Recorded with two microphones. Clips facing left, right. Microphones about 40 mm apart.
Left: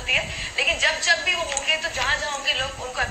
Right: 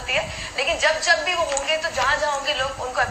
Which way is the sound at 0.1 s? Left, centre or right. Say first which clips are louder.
Left 1 dB; left.